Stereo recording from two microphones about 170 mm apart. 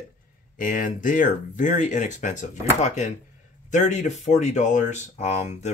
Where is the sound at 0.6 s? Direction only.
50° left (ahead or behind).